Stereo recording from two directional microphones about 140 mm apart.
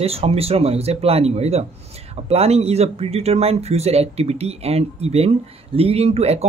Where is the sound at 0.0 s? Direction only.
45° right (ahead or behind).